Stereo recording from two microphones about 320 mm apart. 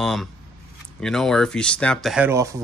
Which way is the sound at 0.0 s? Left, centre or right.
Centre.